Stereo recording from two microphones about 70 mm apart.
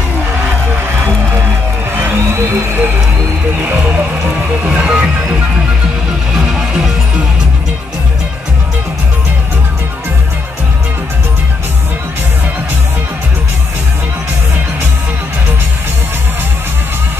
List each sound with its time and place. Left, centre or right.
2.0 s music: right
4.6 s music: centre
6.3 s music: centre